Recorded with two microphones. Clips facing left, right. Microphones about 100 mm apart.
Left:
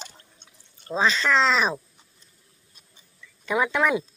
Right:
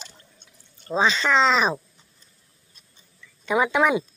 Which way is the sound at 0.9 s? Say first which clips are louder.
Right 1 dB; centre (ahead or behind).